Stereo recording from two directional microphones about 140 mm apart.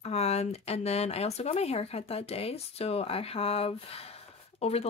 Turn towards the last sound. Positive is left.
turn(degrees=45)  # may be behind; listen again after turning